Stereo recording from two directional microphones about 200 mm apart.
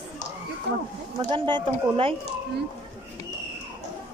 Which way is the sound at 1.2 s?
25° right (ahead or behind).